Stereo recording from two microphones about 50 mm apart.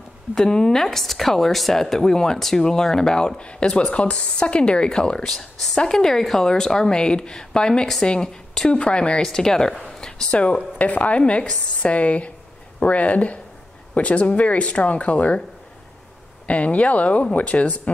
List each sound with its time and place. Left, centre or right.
0.3 s speech: centre
5.3 s a woman's voice: centre; by 15.4 s left
16.4 s speech: left